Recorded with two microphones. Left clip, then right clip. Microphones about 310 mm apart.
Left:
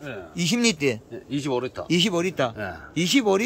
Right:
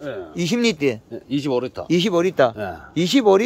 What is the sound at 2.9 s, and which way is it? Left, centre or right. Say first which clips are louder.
Speech: right 6 dB; centre.